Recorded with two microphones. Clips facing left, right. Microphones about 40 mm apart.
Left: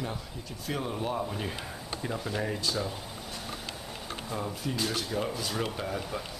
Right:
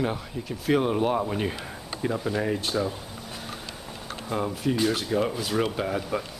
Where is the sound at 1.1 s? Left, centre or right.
Right.